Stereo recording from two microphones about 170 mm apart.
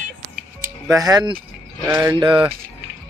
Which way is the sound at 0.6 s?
5° right (ahead or behind).